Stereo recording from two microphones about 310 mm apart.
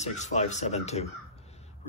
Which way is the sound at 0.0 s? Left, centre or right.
Left.